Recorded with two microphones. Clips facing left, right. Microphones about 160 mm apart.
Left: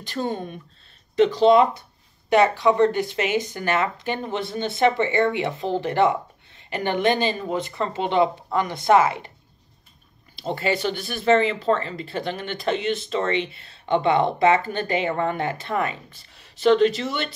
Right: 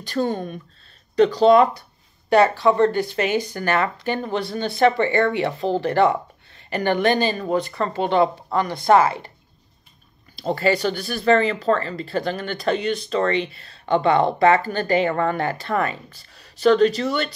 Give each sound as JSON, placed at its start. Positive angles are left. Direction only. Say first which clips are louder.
{"t": 0.0, "sound": "speech", "louder": "right 4 dB", "side_deg": 20}
{"t": 1.1, "sound": "a sound", "louder": "right 2 dB", "side_deg": 20}
{"t": 2.4, "sound": "speech", "louder": "left 1 dB", "side_deg": 20}
{"t": 10.5, "sound": "speech", "louder": "right 4 dB", "side_deg": 20}